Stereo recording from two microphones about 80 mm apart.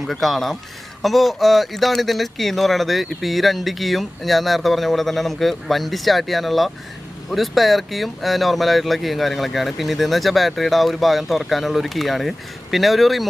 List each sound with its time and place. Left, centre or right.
0.0 s speech: centre